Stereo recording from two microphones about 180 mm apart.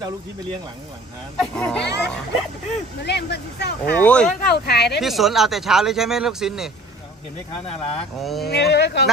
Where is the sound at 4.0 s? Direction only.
5° left (ahead or behind).